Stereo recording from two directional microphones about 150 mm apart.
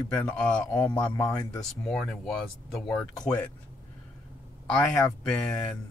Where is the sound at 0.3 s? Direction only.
5° left (ahead or behind).